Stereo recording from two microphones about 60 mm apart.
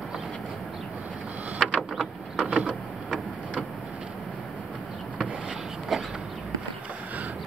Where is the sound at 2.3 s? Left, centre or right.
Centre.